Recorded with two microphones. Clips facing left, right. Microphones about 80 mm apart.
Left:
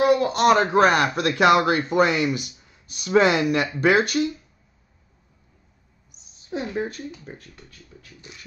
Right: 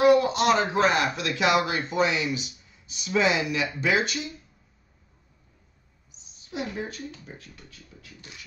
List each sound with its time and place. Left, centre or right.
0.0 s a man's voice: left
6.5 s speech: left